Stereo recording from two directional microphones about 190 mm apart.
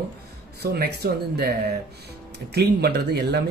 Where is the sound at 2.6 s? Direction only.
55° right (ahead or behind).